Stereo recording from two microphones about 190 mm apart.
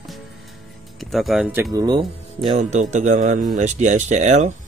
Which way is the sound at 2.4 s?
30° right (ahead or behind).